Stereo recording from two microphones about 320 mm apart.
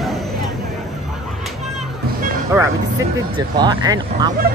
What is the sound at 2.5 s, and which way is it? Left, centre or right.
Vehicle, centre.